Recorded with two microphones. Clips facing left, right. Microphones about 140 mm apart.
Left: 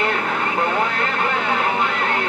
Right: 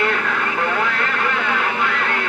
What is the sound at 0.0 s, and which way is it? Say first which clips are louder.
Vehicle: even; 30° left (ahead or behind).